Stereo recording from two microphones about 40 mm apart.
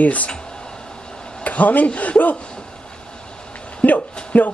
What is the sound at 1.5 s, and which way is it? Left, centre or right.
Speech, left.